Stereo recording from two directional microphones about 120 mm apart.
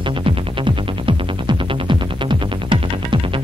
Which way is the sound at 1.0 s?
45° right (ahead or behind).